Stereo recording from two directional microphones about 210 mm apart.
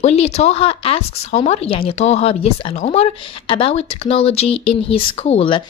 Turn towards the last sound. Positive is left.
turn(degrees=25)  # may be behind; listen again after turning